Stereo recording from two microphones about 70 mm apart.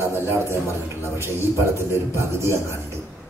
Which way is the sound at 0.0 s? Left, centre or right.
Right.